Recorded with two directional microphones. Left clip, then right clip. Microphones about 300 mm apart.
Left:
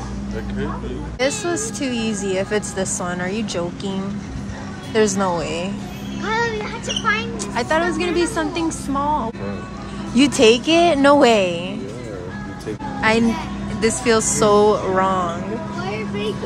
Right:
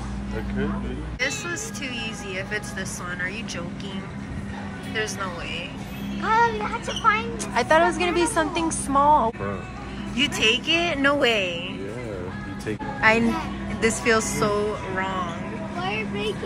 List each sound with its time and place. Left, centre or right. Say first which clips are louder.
1.2 s a woman's voice: left 6 dB; centre
4.9 s speech: left 11 dB; left
6.2 s speech: right 1 dB; centre
7.5 s a woman's voice: right 1 dB; centre
10.1 s a woman's voice: left 7 dB; centre
13.7 s a woman's voice: left 3 dB; centre